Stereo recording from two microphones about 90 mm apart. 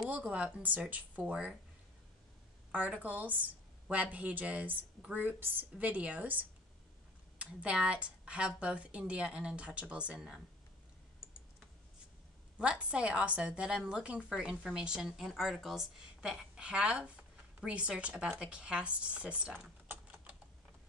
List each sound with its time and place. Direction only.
0.0 s a woman's voice: 15° right (ahead or behind)
2.7 s a woman's voice: 15° right (ahead or behind)
12.5 s a woman's voice: 15° right (ahead or behind)